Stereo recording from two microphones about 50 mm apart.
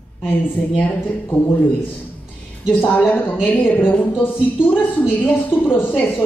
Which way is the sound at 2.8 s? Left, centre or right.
Left.